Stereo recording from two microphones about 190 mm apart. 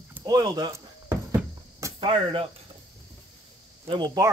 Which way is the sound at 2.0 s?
30° right (ahead or behind).